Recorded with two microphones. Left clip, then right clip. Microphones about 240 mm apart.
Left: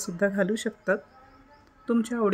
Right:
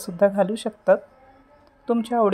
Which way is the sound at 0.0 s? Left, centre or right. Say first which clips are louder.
Right 7 dB; centre.